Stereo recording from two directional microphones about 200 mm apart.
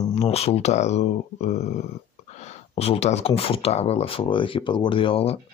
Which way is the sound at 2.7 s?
30° left (ahead or behind).